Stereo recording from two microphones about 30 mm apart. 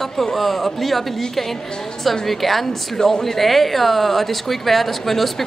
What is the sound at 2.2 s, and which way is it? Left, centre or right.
A woman's voice, centre.